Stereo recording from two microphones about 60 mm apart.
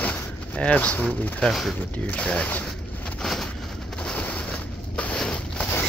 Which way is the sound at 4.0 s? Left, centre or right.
Left.